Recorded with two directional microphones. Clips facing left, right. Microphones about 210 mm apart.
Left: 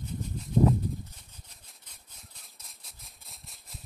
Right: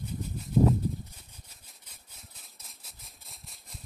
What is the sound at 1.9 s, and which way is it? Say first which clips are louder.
Maraca: right 2 dB; centre (ahead or behind).